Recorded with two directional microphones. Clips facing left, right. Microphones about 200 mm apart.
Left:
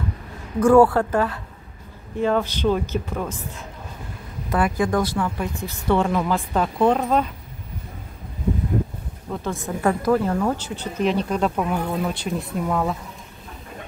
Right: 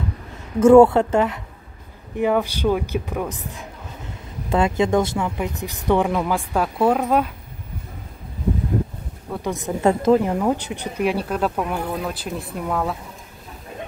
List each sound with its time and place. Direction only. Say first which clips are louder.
0.6 s speech: right 4 dB; 25° right (ahead or behind); by 7.2 s 5° right (ahead or behind)
9.3 s speech: right 2 dB; 15° right (ahead or behind); by 12.9 s centre (ahead or behind)